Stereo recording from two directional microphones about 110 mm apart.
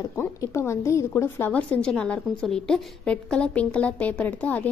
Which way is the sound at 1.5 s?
10° left (ahead or behind).